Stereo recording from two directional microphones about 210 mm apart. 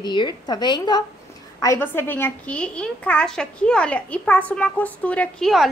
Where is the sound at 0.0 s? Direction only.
20° left (ahead or behind).